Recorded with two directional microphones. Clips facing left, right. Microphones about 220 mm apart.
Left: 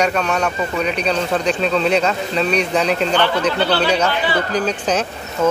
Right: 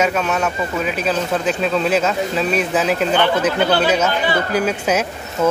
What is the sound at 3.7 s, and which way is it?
Speech, 45° right (ahead or behind).